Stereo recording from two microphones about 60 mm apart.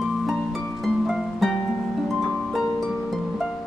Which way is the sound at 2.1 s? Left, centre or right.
Centre.